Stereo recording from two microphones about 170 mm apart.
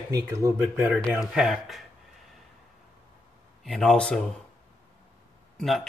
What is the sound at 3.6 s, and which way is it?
Speech, 5° left (ahead or behind).